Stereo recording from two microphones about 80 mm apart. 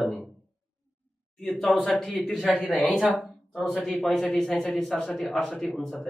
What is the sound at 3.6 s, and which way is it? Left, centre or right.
Speech, centre.